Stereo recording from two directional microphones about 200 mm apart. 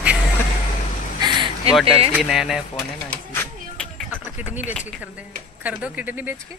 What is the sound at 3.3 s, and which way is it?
Music, 10° left (ahead or behind).